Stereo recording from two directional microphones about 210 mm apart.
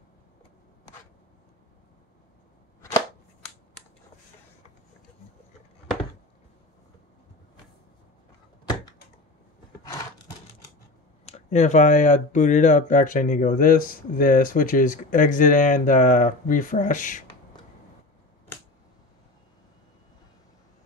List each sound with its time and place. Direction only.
11.2 s speech: 30° left (ahead or behind)